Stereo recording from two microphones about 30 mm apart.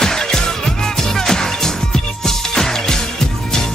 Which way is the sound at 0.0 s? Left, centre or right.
Centre.